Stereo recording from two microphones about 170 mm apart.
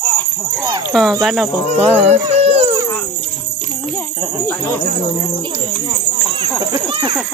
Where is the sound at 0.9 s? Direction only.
Centre (ahead or behind).